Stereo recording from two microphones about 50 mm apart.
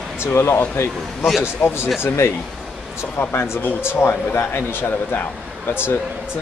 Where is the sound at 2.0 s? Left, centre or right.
Left.